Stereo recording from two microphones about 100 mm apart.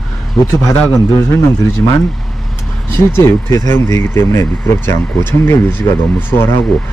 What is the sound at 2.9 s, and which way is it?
Speech, 25° left (ahead or behind).